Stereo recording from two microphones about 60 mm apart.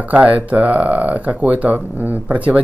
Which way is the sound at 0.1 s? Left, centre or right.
Right.